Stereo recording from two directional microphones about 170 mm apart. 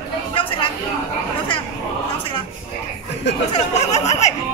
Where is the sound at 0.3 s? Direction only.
30° left (ahead or behind).